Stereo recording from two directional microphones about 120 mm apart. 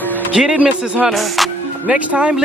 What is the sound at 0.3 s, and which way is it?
Speech, 10° right (ahead or behind).